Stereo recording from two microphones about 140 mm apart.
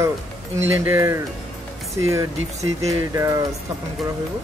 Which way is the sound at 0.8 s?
20° right (ahead or behind).